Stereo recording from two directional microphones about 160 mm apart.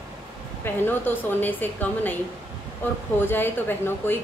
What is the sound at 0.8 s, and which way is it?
A woman's voice, 10° left (ahead or behind).